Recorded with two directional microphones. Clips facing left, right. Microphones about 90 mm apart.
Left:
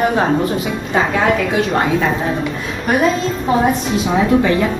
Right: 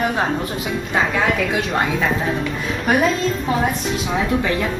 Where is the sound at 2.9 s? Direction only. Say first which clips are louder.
Left 1 dB; centre (ahead or behind).